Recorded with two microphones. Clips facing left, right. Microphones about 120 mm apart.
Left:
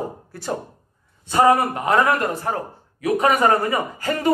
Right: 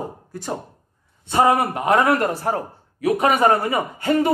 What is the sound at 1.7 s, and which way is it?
Speech, 25° right (ahead or behind).